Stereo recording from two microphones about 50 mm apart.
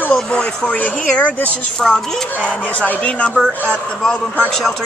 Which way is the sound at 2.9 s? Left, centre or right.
Left.